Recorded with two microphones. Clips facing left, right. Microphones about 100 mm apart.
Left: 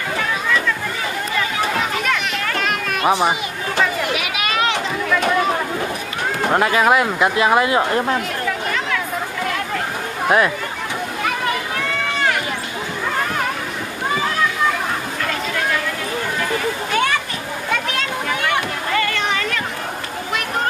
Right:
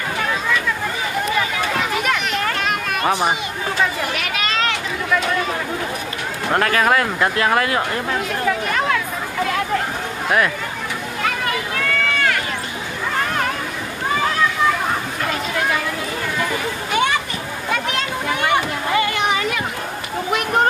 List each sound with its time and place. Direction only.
2.5 s children playing: centre (ahead or behind)
4.1 s a sound: 10° left (ahead or behind)
6.5 s speech: 15° left (ahead or behind)
10.2 s speech: 20° left (ahead or behind)
17.6 s children playing: 5° right (ahead or behind)
18.5 s a sound: 15° right (ahead or behind)